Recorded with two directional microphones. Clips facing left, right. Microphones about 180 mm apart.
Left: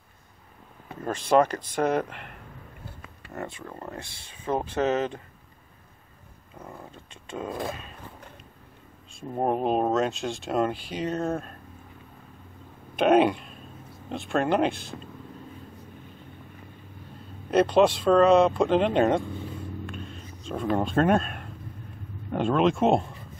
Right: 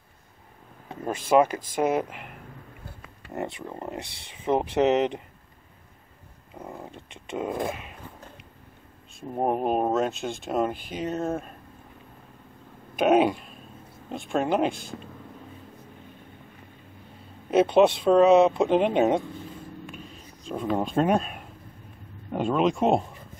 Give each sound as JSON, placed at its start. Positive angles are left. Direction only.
{"t": 1.3, "sound": "speech", "side_deg": -10}
{"t": 3.3, "sound": "speech", "side_deg": -20}
{"t": 6.5, "sound": "speech", "side_deg": -20}
{"t": 9.3, "sound": "speech", "side_deg": -10}
{"t": 12.9, "sound": "speech", "side_deg": -5}
{"t": 17.5, "sound": "speech", "side_deg": -5}
{"t": 19.9, "sound": "a sound", "side_deg": -5}
{"t": 22.3, "sound": "speech", "side_deg": -5}